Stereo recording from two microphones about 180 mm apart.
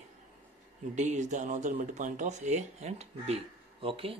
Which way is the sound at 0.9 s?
40° right (ahead or behind).